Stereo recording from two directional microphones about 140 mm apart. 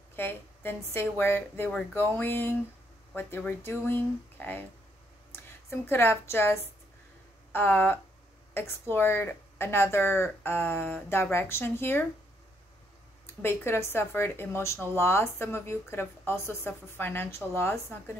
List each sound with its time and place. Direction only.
0.1 s a woman's voice: 15° left (ahead or behind)
13.3 s speech: 15° left (ahead or behind)